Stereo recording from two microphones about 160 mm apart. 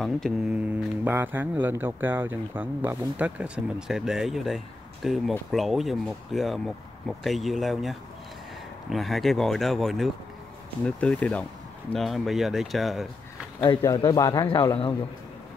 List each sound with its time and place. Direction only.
0.5 s speech: 10° right (ahead or behind)
13.6 s a man's voice: 25° left (ahead or behind)